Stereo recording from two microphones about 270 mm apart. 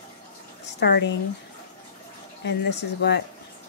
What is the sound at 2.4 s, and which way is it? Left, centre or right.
Speech, left.